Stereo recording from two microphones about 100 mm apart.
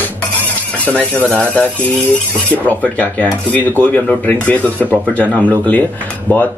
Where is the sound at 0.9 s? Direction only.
15° left (ahead or behind).